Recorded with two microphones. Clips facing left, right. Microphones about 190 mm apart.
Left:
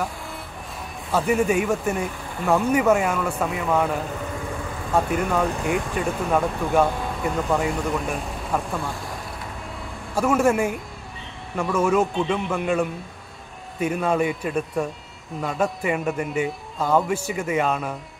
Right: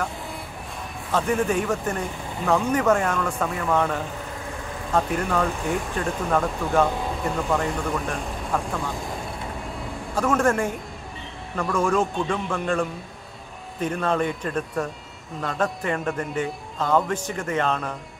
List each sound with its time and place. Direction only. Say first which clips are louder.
1.1 s speech: left 2 dB; 10° left (ahead or behind)
10.1 s speech: left 2 dB; 10° left (ahead or behind)